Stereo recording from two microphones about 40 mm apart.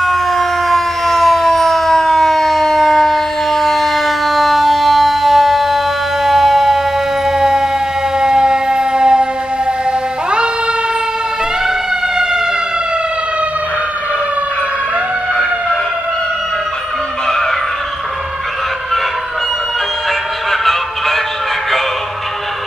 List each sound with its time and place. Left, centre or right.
0.0 s siren: centre
6.2 s music: centre
7.2 s siren: centre